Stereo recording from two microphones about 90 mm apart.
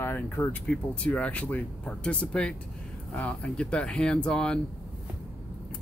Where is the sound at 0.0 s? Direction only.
25° left (ahead or behind).